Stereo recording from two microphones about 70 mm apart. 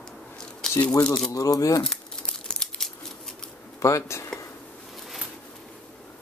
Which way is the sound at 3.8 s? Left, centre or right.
Left.